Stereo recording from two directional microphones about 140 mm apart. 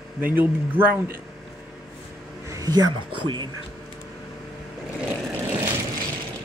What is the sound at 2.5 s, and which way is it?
Speech, 25° right (ahead or behind).